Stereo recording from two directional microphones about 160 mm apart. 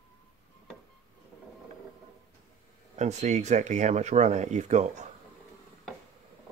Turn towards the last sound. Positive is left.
turn(degrees=-45)  # may be behind; listen again after turning